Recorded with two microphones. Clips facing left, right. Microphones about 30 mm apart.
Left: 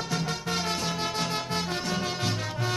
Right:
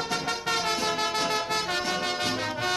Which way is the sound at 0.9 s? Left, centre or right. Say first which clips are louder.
Right 3 dB; right.